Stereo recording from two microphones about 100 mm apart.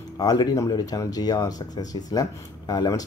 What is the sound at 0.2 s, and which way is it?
Speech, 40° left (ahead or behind).